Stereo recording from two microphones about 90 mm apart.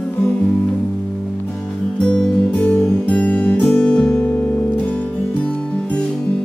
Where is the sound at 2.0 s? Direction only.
10° left (ahead or behind).